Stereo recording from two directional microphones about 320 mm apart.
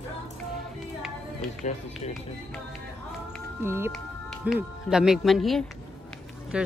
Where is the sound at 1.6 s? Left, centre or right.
Left.